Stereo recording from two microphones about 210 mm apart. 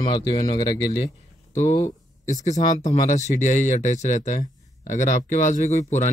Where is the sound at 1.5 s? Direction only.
35° left (ahead or behind).